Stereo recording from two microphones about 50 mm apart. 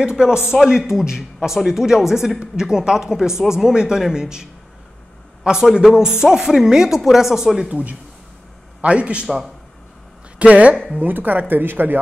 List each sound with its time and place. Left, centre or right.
0.0 s a woman's voice: centre
7.7 s a man's voice: right
10.4 s a man's voice: right
11.0 s speech: right